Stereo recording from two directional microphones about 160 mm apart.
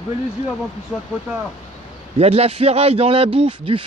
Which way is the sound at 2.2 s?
40° right (ahead or behind).